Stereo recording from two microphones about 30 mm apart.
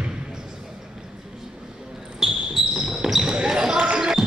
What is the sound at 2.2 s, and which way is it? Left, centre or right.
Basketball bounce, right.